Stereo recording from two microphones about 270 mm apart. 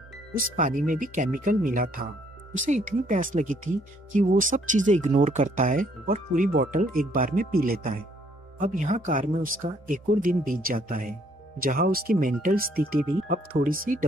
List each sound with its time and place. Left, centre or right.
0.4 s speech: right